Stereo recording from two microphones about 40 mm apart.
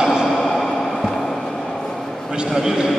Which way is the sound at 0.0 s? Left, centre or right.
Centre.